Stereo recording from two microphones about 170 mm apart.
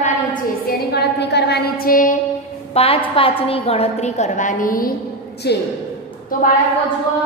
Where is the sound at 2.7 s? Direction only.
35° left (ahead or behind); by 4.9 s 55° left (ahead or behind).